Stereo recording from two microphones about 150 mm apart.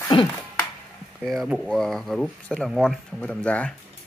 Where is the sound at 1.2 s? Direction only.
Centre (ahead or behind).